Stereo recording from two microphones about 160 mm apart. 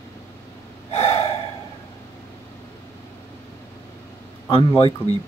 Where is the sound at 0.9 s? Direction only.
40° left (ahead or behind).